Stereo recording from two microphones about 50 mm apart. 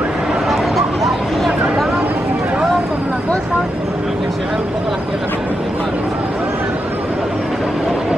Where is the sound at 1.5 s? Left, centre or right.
Centre.